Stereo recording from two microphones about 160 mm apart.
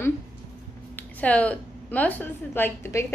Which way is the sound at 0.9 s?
10° left (ahead or behind).